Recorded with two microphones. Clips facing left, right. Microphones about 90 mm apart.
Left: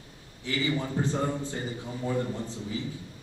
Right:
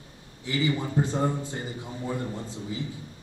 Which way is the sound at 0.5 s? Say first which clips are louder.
Right 2 dB; 20° right (ahead or behind).